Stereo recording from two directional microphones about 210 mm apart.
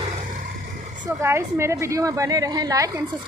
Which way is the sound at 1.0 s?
10° right (ahead or behind).